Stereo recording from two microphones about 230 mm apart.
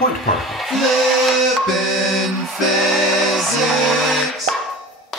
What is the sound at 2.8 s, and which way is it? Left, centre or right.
Music, centre.